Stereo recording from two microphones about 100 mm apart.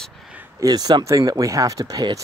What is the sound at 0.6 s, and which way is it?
Speech, 40° right (ahead or behind).